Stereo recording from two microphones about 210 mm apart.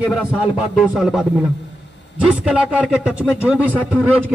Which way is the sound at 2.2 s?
5° right (ahead or behind).